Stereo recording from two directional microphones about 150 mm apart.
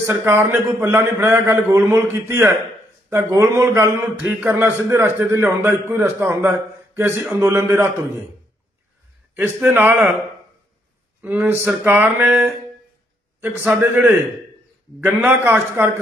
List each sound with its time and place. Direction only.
0.2 s a man's voice: 15° right (ahead or behind)
9.3 s a man's voice: 10° right (ahead or behind)
11.1 s a man's voice: 10° right (ahead or behind)